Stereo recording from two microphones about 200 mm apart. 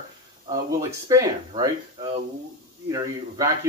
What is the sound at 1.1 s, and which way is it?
Speech, 15° right (ahead or behind).